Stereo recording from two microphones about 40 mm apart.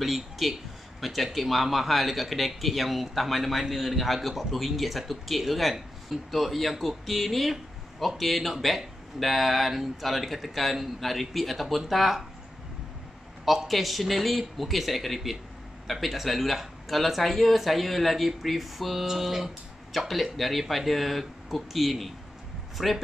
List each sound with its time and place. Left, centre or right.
0.0 s speech: centre
13.5 s speech: centre